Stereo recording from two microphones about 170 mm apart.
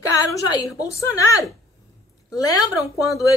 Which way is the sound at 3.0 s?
20° left (ahead or behind).